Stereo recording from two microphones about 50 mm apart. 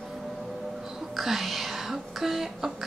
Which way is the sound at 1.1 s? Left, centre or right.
Centre.